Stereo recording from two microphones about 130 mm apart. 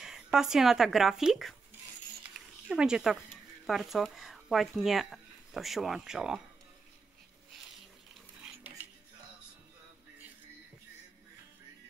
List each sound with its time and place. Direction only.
0.0 s speech: 5° right (ahead or behind)
2.3 s a sound: 5° right (ahead or behind)
3.6 s speech: centre (ahead or behind)
8.4 s dishes: 15° right (ahead or behind)